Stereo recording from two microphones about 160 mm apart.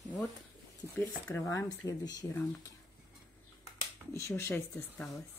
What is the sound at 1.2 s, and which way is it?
Speech, 20° left (ahead or behind).